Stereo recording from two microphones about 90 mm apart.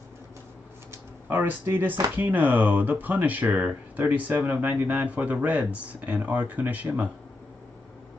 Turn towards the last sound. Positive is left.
turn(degrees=-15)  # may be behind; listen again after turning